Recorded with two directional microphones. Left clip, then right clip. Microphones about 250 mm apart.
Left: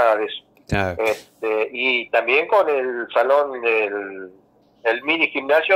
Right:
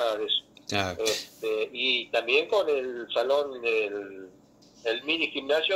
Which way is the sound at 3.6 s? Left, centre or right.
Left.